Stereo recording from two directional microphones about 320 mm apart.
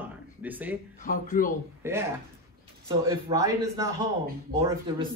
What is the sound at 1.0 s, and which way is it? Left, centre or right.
Speech, left.